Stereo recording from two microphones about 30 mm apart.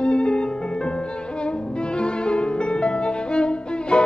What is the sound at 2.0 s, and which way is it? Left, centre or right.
Music, left.